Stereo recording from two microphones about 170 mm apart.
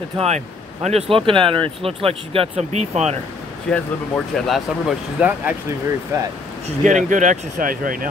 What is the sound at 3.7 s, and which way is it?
Speech, centre (ahead or behind).